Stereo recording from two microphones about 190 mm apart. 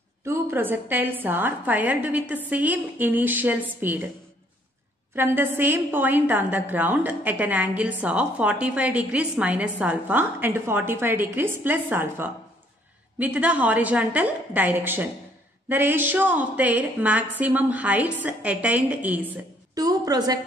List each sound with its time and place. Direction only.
0.2 s a woman's voice: 15° right (ahead or behind)
5.1 s a woman's voice: 10° right (ahead or behind)
19.7 s a woman's voice: 20° right (ahead or behind)